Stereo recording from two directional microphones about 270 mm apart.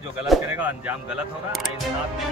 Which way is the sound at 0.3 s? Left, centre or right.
Centre.